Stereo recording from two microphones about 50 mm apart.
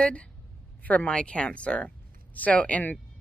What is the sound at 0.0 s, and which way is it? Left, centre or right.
Speech, left.